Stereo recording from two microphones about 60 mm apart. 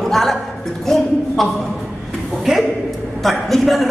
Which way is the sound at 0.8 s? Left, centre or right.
Centre.